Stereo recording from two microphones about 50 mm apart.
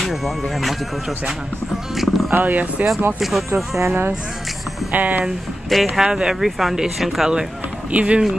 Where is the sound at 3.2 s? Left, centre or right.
Centre.